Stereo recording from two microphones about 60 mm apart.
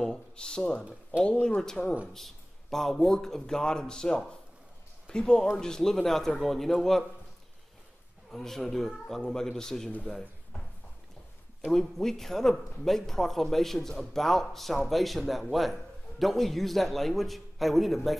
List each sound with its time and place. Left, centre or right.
0.0 s speech: centre
2.1 s a man's voice: centre
8.3 s a man's voice: centre
9.8 s speech: left
11.7 s a man's voice: centre